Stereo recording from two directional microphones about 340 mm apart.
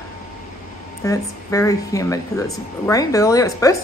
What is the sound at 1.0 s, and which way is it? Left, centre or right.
Speech, centre.